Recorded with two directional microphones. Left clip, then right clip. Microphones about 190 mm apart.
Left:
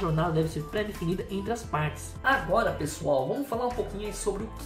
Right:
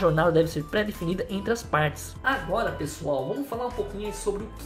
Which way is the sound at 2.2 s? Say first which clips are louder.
Left 1 dB; centre (ahead or behind).